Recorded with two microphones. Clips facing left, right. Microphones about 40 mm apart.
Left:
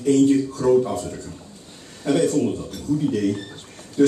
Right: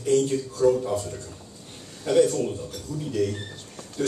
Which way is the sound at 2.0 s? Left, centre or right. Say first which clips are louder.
Left 1 dB; centre.